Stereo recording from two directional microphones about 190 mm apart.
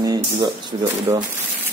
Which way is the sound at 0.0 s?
20° right (ahead or behind).